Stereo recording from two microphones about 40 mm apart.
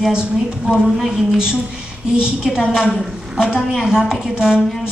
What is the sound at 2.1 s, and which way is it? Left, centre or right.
A woman's voice, centre.